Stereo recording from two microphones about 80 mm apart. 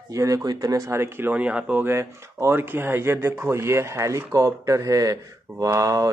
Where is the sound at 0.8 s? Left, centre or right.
Right.